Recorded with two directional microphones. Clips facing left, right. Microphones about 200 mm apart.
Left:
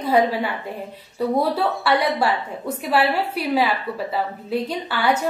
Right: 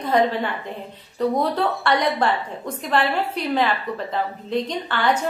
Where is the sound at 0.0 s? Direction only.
10° left (ahead or behind).